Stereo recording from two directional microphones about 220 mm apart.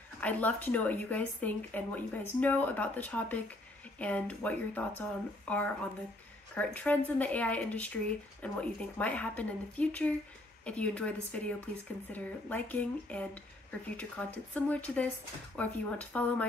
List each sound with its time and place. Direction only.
0.2 s a woman's voice: 5° left (ahead or behind)